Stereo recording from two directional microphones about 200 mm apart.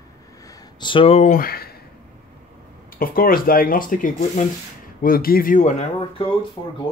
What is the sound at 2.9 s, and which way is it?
Speech, 45° left (ahead or behind).